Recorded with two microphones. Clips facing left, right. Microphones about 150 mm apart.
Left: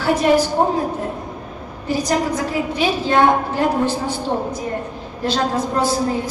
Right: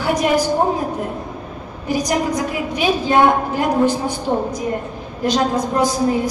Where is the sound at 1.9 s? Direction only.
15° right (ahead or behind).